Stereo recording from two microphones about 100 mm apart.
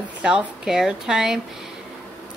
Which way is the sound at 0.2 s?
10° right (ahead or behind).